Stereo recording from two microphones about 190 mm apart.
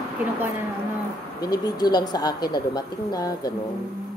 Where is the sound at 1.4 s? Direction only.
20° left (ahead or behind).